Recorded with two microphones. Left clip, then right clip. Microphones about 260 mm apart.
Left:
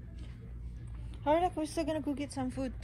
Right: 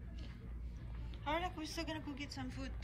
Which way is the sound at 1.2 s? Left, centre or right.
Centre.